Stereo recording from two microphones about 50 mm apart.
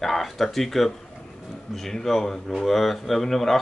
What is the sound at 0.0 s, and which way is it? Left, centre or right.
Speech, centre.